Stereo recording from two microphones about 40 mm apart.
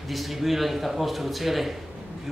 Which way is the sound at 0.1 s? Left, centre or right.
Centre.